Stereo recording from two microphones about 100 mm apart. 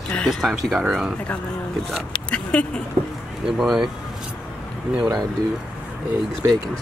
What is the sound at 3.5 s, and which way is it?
Speech, 5° right (ahead or behind).